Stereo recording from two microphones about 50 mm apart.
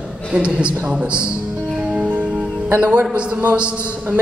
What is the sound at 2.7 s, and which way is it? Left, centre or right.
Speech, right.